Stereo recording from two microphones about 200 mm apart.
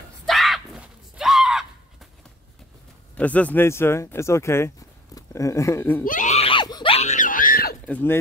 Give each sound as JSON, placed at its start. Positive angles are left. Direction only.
{"t": 0.3, "sound": "screaming", "side_deg": 0}
{"t": 3.2, "sound": "speech", "side_deg": 5}
{"t": 6.0, "sound": "screaming", "side_deg": 40}
{"t": 7.8, "sound": "speech", "side_deg": 10}